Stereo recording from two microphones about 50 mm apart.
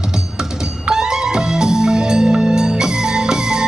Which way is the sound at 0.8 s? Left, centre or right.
Centre.